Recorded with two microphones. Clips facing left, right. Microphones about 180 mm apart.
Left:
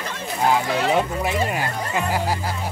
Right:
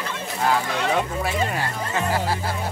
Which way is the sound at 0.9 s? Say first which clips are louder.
Left 2 dB; 15° left (ahead or behind).